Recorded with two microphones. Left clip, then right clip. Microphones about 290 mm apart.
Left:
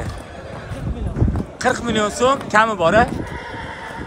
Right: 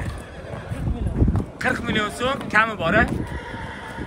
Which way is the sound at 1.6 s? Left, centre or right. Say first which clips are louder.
Left 4 dB; centre.